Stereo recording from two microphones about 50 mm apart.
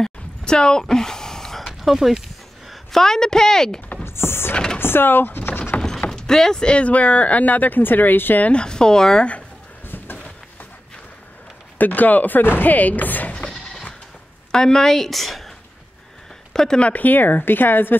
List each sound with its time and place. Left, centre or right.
0.0 s a sound: centre
1.7 s a sound: centre
2.9 s a woman's voice: centre
4.0 s speech: left
6.0 s speech: centre; by 8.5 s left
8.5 s a woman's voice: centre
9.8 s a sound: left
11.8 s speech: left
13.5 s sheep: centre
14.5 s a woman's voice: centre
16.5 s a woman's voice: centre
16.9 s speech: left